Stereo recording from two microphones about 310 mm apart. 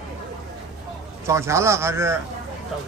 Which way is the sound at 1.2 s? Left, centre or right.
Centre.